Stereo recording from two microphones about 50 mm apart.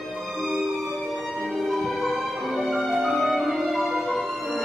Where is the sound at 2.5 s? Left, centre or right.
Centre.